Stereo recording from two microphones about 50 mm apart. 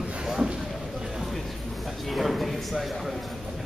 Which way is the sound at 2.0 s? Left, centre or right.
Centre.